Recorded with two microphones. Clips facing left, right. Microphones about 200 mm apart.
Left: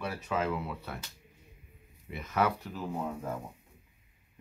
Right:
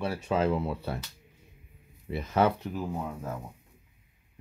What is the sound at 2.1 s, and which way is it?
Speech, 30° right (ahead or behind).